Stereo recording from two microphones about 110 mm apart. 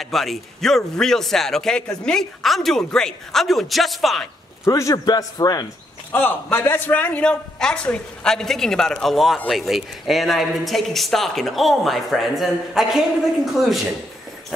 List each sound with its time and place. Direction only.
0.0 s a man's voice: centre (ahead or behind)
4.6 s a man's voice: 30° left (ahead or behind)
6.1 s a man's voice: 20° left (ahead or behind); by 13.7 s centre (ahead or behind)